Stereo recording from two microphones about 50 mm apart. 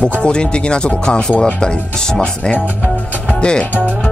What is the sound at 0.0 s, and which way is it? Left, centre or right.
Speech, centre.